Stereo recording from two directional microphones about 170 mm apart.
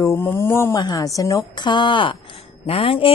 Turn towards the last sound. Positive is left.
turn(degrees=30)  # may be behind; listen again after turning